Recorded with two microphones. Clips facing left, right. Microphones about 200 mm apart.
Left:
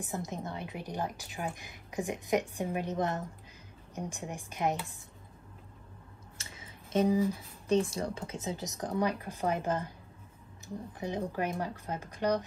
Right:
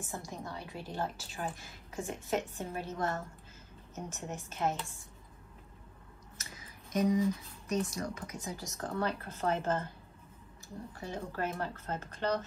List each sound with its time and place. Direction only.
0.0 s a woman's voice: 20° left (ahead or behind)
6.3 s a sound: 30° left (ahead or behind)
7.6 s a woman's voice: 30° left (ahead or behind); by 9.9 s 15° left (ahead or behind)
11.0 s a woman's voice: 15° left (ahead or behind)